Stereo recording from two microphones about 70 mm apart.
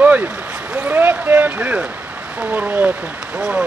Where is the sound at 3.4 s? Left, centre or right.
Centre.